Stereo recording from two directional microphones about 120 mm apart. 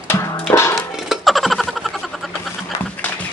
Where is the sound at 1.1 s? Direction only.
Centre (ahead or behind).